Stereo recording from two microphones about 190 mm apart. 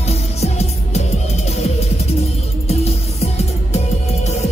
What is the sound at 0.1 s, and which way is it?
Music, 35° left (ahead or behind).